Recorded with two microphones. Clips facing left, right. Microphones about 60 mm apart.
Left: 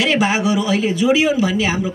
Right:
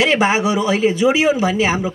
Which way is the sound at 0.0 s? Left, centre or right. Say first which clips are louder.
Right 2 dB; right.